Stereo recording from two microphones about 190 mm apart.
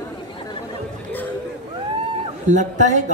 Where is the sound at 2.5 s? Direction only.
40° right (ahead or behind).